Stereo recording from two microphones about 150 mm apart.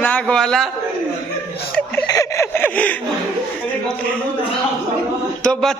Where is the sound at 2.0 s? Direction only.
20° left (ahead or behind).